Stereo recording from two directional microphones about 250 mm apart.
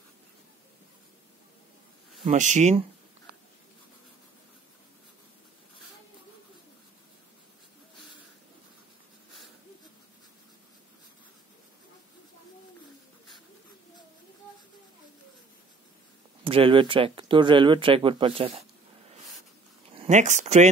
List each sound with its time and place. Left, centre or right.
2.2 s speech: right
16.4 s speech: right
19.9 s speech: right